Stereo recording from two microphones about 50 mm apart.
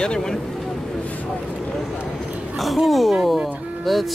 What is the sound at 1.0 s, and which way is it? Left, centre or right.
Vehicle, left.